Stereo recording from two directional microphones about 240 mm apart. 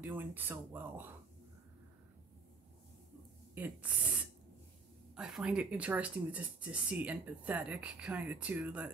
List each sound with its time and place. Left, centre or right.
0.0 s speech: centre
3.5 s speech: centre
5.1 s speech: centre